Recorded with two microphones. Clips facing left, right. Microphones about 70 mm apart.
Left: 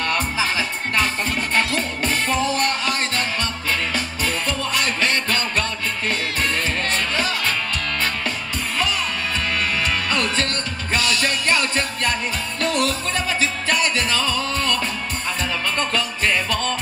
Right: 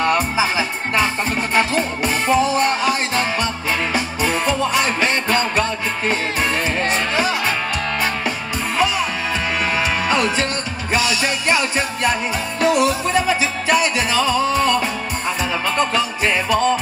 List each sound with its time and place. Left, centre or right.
0.0 s music: centre
9.8 s music: centre